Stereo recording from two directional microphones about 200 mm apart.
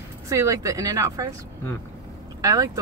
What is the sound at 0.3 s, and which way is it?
Speech, 15° right (ahead or behind).